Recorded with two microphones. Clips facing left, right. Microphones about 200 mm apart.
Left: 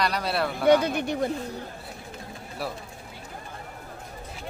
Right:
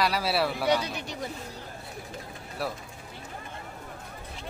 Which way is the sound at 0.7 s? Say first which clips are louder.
Left 7 dB; 55° left (ahead or behind).